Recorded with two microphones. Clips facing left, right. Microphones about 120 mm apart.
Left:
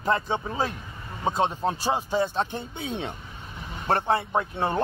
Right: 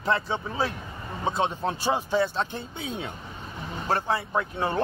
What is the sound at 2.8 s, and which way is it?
Speech, 25° left (ahead or behind).